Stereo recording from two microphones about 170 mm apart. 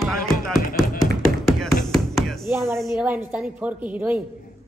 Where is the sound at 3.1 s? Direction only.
10° right (ahead or behind).